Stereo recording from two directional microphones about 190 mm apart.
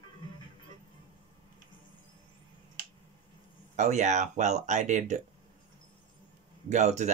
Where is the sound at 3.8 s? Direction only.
40° right (ahead or behind).